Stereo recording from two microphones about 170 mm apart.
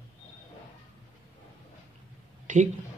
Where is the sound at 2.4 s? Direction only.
45° right (ahead or behind).